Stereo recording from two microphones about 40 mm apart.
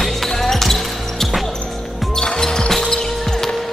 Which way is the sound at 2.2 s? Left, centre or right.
Centre.